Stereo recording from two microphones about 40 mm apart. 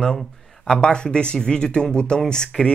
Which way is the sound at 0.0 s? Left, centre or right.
Centre.